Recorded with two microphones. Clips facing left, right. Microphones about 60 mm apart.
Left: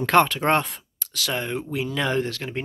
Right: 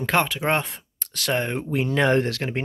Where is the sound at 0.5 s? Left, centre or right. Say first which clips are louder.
Left 2 dB; right.